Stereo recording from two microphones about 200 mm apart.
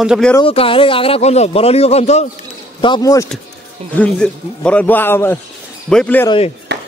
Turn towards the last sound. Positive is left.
turn(degrees=25)  # may be behind; listen again after turning